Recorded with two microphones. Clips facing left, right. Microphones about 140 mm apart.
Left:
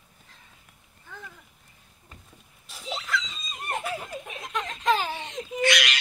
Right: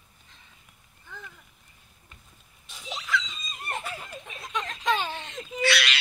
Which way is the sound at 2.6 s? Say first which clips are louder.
Left 3 dB; 5° left (ahead or behind).